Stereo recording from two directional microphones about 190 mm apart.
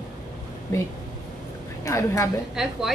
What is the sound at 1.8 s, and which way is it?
Speech, 15° left (ahead or behind).